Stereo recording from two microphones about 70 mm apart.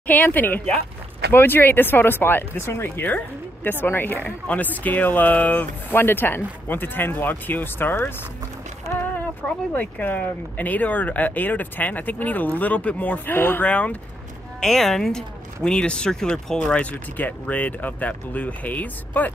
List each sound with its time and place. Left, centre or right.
0.0 s speech: left
9.1 s speech: left
14.6 s speech: centre; by 19.3 s left